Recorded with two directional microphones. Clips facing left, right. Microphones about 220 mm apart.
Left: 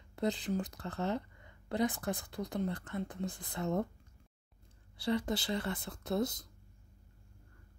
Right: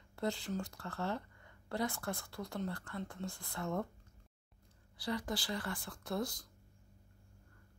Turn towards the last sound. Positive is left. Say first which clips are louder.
# left 5 dB
turn(degrees=20)  # may be behind; listen again after turning